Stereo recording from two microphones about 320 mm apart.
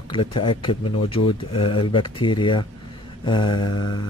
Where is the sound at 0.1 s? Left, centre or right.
Centre.